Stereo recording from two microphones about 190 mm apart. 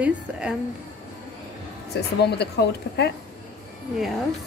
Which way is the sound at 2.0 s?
60° left (ahead or behind).